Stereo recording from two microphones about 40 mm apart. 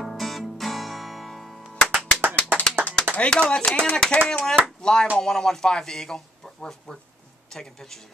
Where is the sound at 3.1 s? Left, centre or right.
Left.